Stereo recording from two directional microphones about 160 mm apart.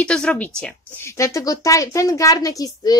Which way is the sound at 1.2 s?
20° left (ahead or behind).